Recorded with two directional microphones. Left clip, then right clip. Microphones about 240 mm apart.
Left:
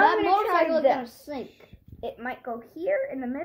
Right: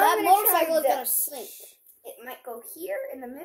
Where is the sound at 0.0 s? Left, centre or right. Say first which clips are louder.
Right 1 dB; centre.